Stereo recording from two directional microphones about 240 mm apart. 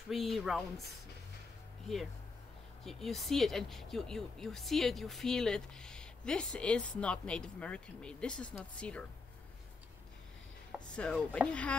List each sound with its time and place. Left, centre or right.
0.1 s speech: centre
2.8 s speech: centre
10.9 s speech: centre